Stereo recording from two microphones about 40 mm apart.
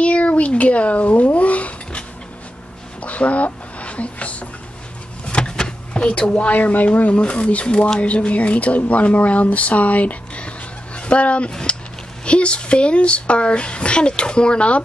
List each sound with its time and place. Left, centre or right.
0.0 s a sound: left
5.2 s power windows: left
5.6 s speech: left
7.2 s speech: left